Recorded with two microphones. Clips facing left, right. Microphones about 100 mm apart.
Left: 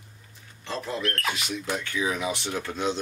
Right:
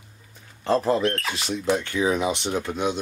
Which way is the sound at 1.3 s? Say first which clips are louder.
Right 7 dB; 30° right (ahead or behind).